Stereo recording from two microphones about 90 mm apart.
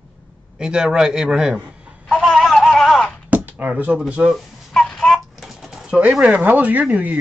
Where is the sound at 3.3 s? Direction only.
20° right (ahead or behind).